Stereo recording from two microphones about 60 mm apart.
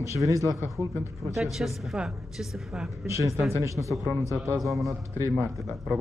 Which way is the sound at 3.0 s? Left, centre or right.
Right.